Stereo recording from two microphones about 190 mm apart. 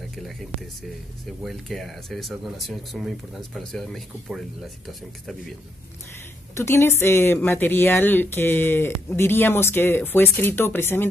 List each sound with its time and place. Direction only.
1.4 s speech: centre (ahead or behind)
6.5 s speech: 15° left (ahead or behind)